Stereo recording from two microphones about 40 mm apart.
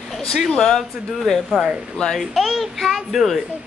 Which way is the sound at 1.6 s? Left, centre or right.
Centre.